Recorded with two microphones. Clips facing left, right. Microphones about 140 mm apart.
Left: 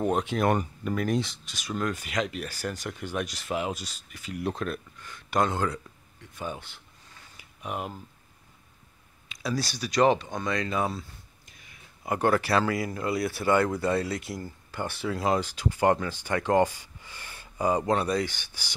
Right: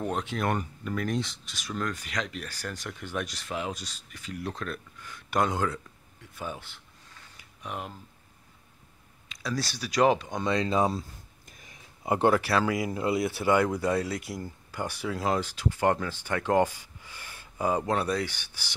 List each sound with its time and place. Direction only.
0.0 s speech: 15° left (ahead or behind)
5.0 s speech: 5° right (ahead or behind)
7.3 s a sound: 15° left (ahead or behind)
9.3 s speech: 10° left (ahead or behind); by 10.4 s 10° right (ahead or behind)
10.4 s speech: 25° right (ahead or behind)
11.0 s a sound: 40° right (ahead or behind)
12.0 s speech: 20° right (ahead or behind)
12.4 s speech: 5° right (ahead or behind)
12.7 s speech: 15° right (ahead or behind)